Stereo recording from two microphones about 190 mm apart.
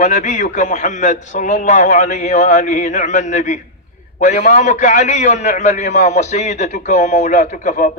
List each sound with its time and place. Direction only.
0.0 s a man's voice: 40° left (ahead or behind)